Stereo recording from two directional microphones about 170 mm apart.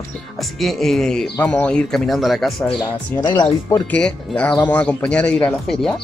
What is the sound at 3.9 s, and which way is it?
Speech, 5° left (ahead or behind).